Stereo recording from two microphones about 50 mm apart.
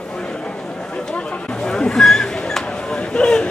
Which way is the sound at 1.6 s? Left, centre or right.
Centre.